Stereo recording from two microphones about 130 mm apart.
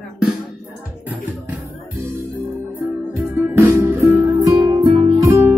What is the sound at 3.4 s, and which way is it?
Music, 15° right (ahead or behind).